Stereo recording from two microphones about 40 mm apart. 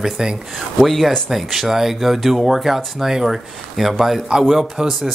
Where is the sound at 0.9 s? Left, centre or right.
Centre.